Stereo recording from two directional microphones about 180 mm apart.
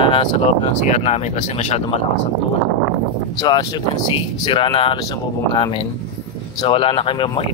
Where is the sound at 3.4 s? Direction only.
25° left (ahead or behind).